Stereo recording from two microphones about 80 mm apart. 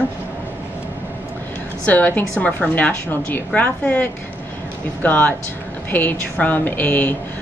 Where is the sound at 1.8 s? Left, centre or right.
Left.